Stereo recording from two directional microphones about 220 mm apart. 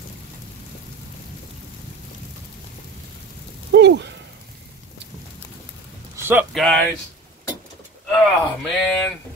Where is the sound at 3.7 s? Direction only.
50° right (ahead or behind).